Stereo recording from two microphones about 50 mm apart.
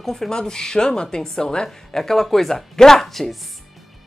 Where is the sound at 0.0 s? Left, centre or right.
Centre.